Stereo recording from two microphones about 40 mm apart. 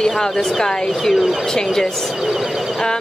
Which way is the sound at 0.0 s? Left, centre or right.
Centre.